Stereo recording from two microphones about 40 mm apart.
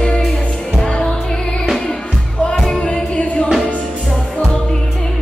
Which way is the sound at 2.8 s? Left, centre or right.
Left.